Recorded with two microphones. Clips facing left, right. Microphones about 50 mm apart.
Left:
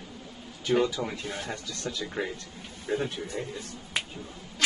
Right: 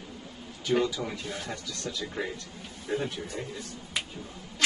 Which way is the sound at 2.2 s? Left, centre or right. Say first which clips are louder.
Left 2 dB; left.